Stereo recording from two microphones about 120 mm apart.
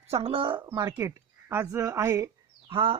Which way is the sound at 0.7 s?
30° right (ahead or behind).